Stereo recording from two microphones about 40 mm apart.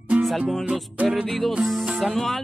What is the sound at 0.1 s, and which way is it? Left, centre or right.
Music, right.